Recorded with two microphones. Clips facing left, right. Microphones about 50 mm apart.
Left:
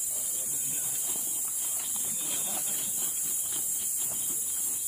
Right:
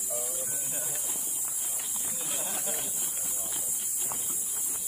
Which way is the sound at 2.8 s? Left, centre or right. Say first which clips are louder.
Right 2 dB; right.